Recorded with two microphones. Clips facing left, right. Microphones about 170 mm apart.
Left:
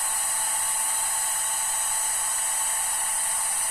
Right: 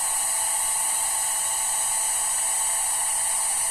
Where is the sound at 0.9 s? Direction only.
15° right (ahead or behind).